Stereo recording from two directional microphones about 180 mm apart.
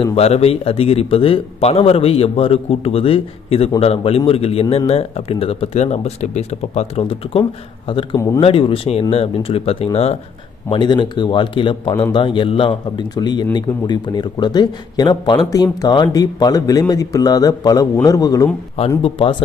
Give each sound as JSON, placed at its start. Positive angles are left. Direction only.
{"t": 0.0, "sound": "a man's voice", "side_deg": 35}
{"t": 19.0, "sound": "a man's voice", "side_deg": 30}